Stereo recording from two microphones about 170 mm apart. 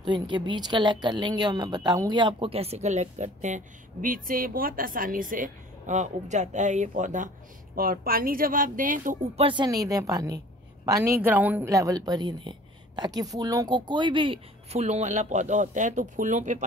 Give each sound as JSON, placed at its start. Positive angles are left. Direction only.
{"t": 0.0, "sound": "speech", "side_deg": -25}
{"t": 7.7, "sound": "a woman's voice", "side_deg": -60}